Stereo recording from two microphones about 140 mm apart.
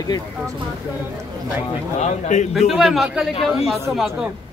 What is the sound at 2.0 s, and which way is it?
Speech, 55° left (ahead or behind).